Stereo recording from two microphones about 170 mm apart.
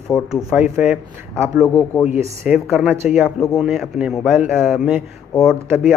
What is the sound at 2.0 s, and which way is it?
Speech, 5° right (ahead or behind).